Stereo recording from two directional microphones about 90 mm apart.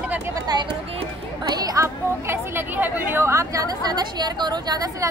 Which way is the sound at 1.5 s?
45° right (ahead or behind).